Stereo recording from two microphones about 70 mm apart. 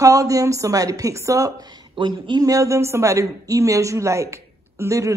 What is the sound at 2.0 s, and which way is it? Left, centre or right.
A woman's voice, right.